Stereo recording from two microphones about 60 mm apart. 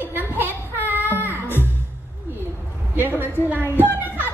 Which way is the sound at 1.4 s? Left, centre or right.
Left.